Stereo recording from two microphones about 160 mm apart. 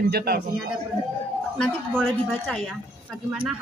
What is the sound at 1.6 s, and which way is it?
A woman's voice, centre (ahead or behind).